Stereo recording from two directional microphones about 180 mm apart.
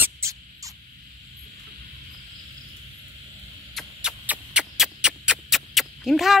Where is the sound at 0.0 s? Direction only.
15° right (ahead or behind).